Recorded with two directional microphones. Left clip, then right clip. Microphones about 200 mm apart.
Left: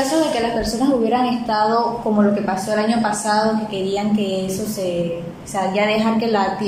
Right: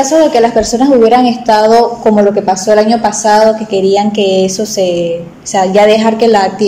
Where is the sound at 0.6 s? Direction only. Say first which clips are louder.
Right 11 dB; 35° right (ahead or behind).